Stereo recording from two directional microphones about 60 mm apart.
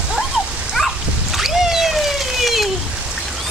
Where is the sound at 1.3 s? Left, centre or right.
Centre.